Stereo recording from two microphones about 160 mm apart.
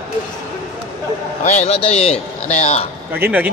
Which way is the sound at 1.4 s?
45° left (ahead or behind).